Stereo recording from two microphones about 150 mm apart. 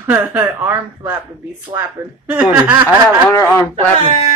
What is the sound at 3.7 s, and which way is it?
Speech, 40° right (ahead or behind).